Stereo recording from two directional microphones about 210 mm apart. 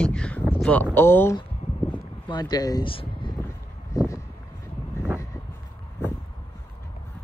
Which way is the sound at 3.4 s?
15° left (ahead or behind).